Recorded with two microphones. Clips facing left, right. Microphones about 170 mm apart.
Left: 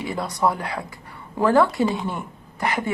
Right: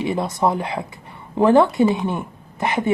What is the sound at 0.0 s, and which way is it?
Speech, 25° right (ahead or behind).